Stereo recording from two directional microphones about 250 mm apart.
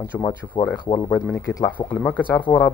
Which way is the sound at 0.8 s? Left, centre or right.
Centre.